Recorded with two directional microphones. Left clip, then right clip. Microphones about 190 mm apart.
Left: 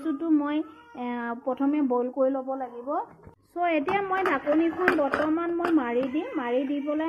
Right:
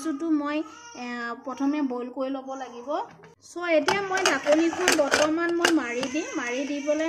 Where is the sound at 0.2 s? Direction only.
5° left (ahead or behind).